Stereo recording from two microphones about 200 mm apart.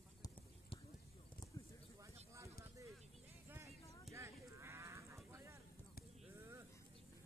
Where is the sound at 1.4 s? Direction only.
20° left (ahead or behind).